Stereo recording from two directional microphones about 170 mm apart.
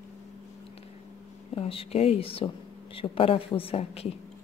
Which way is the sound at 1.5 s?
35° left (ahead or behind).